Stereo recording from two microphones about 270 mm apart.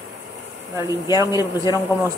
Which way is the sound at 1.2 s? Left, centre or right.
Centre.